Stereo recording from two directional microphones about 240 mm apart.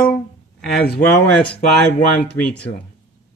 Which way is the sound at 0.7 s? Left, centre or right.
Left.